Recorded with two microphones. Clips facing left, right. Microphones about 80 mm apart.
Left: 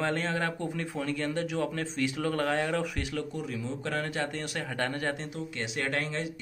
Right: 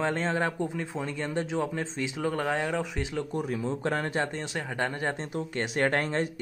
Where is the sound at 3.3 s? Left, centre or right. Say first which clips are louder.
Right 5 dB; right.